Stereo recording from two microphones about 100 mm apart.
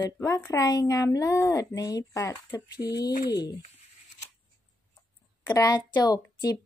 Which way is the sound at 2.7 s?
45° left (ahead or behind).